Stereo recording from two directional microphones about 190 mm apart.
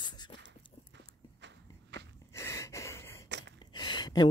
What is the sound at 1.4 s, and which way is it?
Walk, 70° right (ahead or behind).